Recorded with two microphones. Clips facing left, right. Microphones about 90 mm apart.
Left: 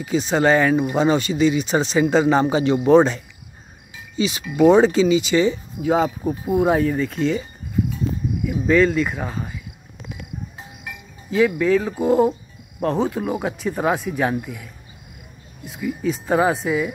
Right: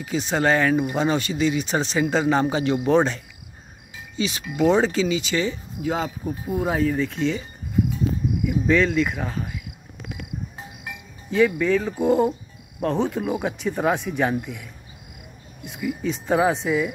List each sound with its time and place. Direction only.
0.0 s speech: 5° left (ahead or behind)
4.2 s speech: 10° left (ahead or behind)
5.8 s speech: 10° left (ahead or behind)
8.6 s speech: 5° left (ahead or behind)
11.2 s speech: 5° left (ahead or behind)
15.7 s speech: centre (ahead or behind)